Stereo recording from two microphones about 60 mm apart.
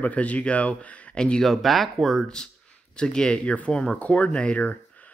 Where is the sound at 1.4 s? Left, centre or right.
Centre.